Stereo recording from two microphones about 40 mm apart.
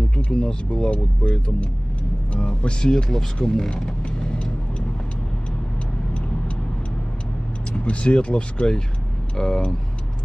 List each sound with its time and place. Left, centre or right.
0.1 s speech: left; by 3.7 s centre
3.8 s vehicle: left
6.1 s vehicle: left
7.7 s speech: left